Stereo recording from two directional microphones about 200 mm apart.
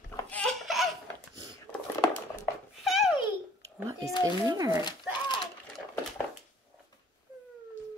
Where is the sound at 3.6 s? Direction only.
15° right (ahead or behind).